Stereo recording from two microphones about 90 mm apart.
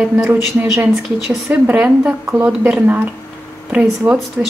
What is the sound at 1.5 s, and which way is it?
A woman's voice, 15° right (ahead or behind).